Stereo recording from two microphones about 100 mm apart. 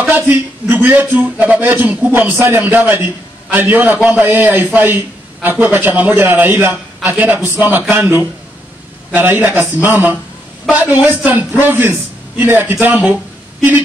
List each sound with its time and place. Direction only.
0.1 s a man's voice: 20° right (ahead or behind)